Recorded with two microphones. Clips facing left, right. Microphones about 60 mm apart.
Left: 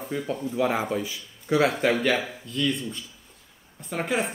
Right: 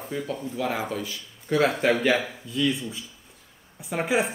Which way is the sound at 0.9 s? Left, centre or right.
Centre.